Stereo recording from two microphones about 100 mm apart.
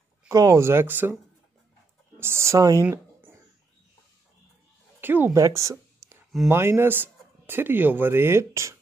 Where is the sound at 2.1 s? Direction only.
25° right (ahead or behind).